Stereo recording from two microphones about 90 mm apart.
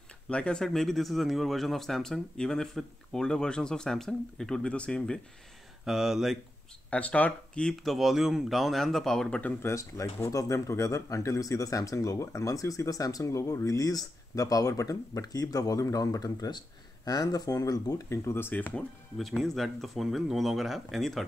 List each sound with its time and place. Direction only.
0.3 s speech: 10° left (ahead or behind)
5.9 s speech: 5° right (ahead or behind)
6.9 s speech: 15° left (ahead or behind)
7.8 s speech: centre (ahead or behind)
9.4 s speech: 25° left (ahead or behind)
19.1 s speech: centre (ahead or behind)